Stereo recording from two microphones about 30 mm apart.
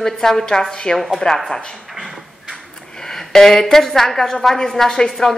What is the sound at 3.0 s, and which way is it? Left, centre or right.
A woman's voice, centre.